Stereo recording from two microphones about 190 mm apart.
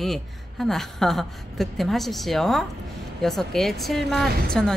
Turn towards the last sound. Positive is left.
turn(degrees=5)  # may be behind; listen again after turning